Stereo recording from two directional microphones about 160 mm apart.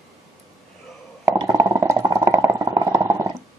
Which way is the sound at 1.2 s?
20° right (ahead or behind).